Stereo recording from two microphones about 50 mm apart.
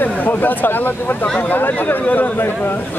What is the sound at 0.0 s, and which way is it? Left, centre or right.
Speech, left.